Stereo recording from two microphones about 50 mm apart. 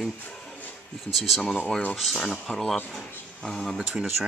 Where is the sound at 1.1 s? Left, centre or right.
Centre.